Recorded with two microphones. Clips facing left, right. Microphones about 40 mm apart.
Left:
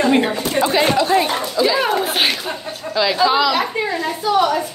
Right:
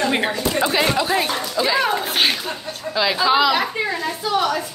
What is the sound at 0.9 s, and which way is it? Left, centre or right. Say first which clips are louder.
A woman's voice: left 4 dB; centre.